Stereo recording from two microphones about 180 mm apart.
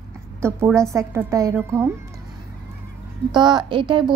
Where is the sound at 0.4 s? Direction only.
15° right (ahead or behind).